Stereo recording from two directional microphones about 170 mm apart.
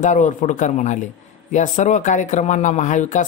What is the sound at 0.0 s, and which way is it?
A man's voice, 50° left (ahead or behind).